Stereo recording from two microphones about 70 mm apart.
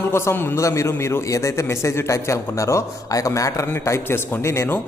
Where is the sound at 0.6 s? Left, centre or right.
Left.